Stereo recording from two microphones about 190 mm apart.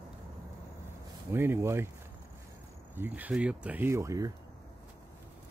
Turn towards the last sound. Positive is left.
turn(degrees=-15)  # may be behind; listen again after turning